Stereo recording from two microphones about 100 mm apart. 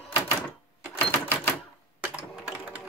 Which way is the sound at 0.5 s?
20° left (ahead or behind).